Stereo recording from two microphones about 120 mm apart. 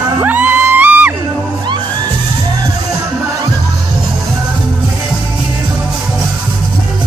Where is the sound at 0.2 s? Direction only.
15° right (ahead or behind).